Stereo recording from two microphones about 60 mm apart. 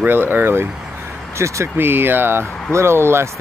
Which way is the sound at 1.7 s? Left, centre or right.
Right.